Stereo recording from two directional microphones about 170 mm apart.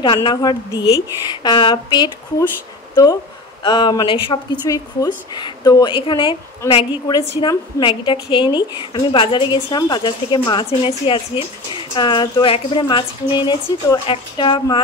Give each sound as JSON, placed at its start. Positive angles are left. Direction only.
{"t": 0.0, "sound": "a woman's voice", "side_deg": 30}
{"t": 3.6, "sound": "a woman's voice", "side_deg": 25}